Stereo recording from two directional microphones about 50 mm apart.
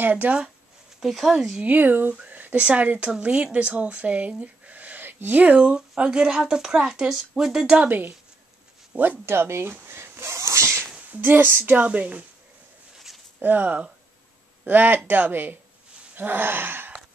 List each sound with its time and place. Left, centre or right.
0.0 s speech: right
1.0 s speech: centre
1.7 s speech: right
2.2 s a sound: right
2.6 s speech: right
5.6 s speech: centre
7.7 s speech: right
9.2 s a sound: right
11.1 s speech: right
11.8 s speech: right
13.4 s speech: right